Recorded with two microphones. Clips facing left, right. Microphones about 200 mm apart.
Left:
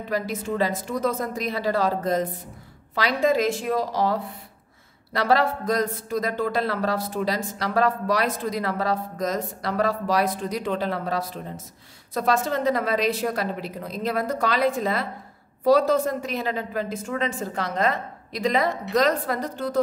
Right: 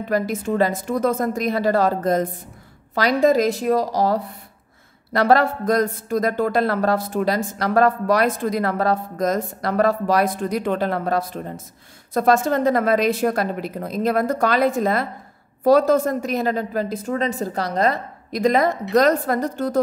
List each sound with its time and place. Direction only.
0.1 s a woman's voice: 50° right (ahead or behind)